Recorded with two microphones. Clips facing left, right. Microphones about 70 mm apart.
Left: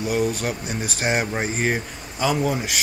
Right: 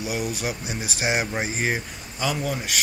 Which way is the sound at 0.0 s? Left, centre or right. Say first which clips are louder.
Left 5 dB; centre.